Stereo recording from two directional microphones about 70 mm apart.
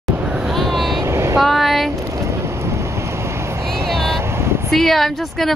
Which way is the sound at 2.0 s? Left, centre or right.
Right.